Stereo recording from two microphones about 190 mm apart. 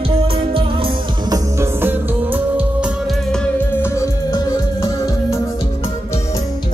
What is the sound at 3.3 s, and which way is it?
Music, 10° left (ahead or behind).